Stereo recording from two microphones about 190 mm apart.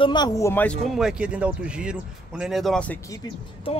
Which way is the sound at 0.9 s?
5° right (ahead or behind).